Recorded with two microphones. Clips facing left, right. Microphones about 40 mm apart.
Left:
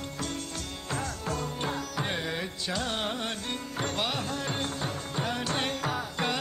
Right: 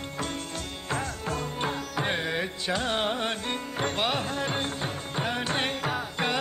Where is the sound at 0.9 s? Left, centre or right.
Right.